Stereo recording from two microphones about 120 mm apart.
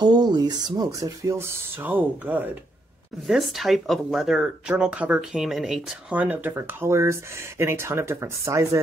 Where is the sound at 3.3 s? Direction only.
Centre (ahead or behind).